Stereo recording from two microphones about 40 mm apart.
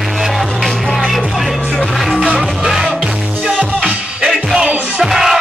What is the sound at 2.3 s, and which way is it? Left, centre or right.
Music, centre.